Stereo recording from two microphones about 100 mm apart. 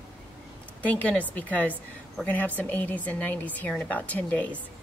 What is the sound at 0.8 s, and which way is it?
Speech, 15° left (ahead or behind).